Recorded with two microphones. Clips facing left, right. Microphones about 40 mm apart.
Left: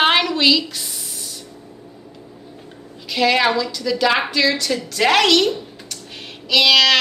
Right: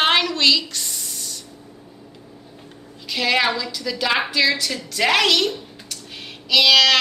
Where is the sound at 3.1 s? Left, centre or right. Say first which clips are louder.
Left 3 dB; centre.